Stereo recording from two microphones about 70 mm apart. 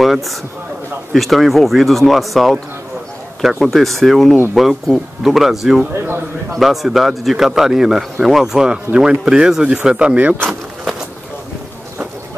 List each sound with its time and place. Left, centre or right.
0.0 s a man's voice: centre
5.9 s a man's voice: right
6.5 s speech: centre